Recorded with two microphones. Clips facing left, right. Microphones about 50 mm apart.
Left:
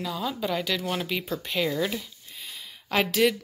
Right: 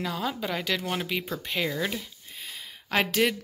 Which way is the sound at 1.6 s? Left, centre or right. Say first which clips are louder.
Left 3 dB; centre.